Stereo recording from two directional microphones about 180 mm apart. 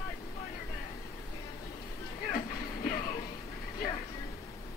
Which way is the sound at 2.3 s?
45° left (ahead or behind).